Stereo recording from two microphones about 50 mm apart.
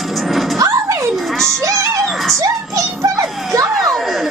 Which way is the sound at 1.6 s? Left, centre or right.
Right.